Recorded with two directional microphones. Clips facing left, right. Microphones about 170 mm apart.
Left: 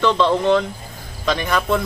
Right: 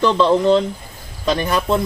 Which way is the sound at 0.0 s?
35° right (ahead or behind).